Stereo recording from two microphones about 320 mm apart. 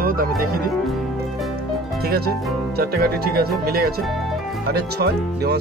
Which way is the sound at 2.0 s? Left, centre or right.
Right.